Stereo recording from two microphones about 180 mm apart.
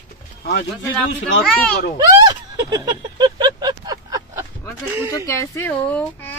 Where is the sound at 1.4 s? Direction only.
5° left (ahead or behind).